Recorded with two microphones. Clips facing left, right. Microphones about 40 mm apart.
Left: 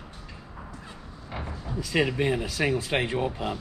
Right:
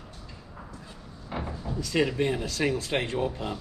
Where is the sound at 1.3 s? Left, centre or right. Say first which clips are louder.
Right 2 dB; centre.